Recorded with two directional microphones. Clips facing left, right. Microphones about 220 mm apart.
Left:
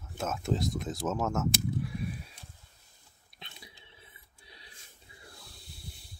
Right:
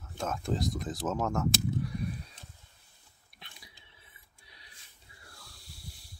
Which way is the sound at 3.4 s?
25° left (ahead or behind).